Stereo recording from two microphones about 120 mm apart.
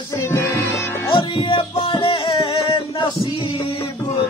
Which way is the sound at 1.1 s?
50° left (ahead or behind).